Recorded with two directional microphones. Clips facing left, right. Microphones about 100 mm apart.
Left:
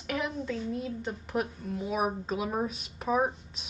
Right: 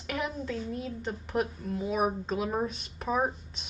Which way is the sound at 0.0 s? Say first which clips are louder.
Left 1 dB; centre (ahead or behind).